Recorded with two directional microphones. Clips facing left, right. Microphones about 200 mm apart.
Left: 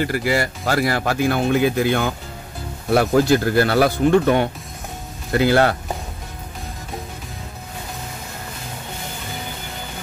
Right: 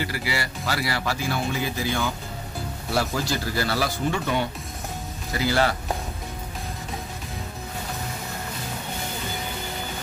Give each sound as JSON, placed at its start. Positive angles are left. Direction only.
{"t": 0.0, "sound": "speech", "side_deg": 50}